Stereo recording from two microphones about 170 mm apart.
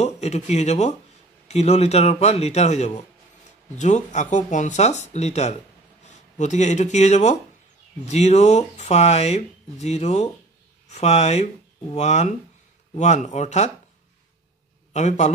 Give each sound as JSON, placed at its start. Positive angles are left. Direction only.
{"t": 0.0, "sound": "speech", "side_deg": 40}
{"t": 14.9, "sound": "a man's voice", "side_deg": 45}